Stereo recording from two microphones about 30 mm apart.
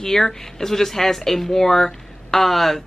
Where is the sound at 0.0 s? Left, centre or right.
Centre.